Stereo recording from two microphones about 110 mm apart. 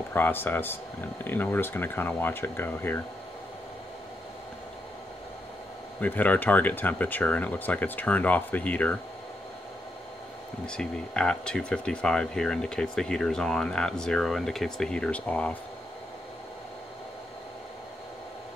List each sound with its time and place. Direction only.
0.1 s speech: 20° left (ahead or behind)
5.9 s speech: 15° left (ahead or behind)
10.7 s speech: 10° left (ahead or behind)